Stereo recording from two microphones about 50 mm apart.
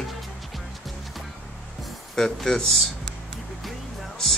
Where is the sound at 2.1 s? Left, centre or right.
Centre.